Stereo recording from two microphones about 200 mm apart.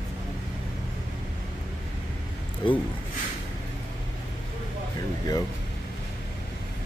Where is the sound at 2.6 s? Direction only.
25° left (ahead or behind).